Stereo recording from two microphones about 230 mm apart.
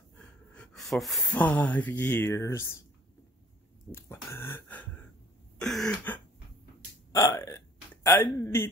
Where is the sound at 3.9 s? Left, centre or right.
Centre.